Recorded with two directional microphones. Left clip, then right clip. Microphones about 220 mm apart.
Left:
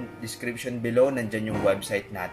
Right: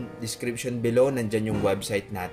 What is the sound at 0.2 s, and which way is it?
Speech, 50° right (ahead or behind).